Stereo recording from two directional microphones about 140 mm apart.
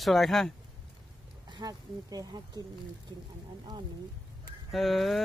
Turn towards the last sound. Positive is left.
turn(degrees=0)  # may be behind; listen again after turning